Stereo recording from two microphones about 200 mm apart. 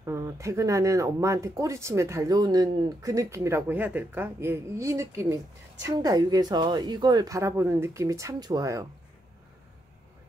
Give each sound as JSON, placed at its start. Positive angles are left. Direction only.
{"t": 0.0, "sound": "speech", "side_deg": -15}